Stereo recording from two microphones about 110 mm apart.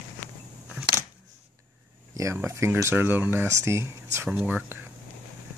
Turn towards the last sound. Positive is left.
turn(degrees=-15)  # may be behind; listen again after turning